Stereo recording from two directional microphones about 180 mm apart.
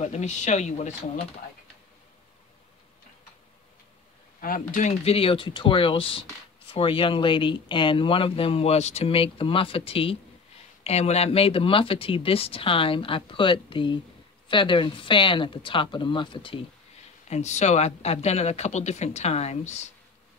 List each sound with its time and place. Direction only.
0.0 s speech: 40° left (ahead or behind)
4.4 s speech: 50° left (ahead or behind); by 16.6 s 30° left (ahead or behind)
17.3 s speech: 40° left (ahead or behind)